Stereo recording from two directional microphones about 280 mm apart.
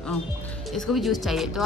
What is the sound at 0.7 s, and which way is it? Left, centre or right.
Speech, centre.